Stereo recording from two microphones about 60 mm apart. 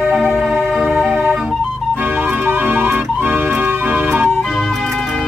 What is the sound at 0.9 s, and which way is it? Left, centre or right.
Music, centre.